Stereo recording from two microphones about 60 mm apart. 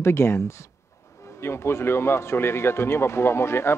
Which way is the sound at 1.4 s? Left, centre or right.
Left.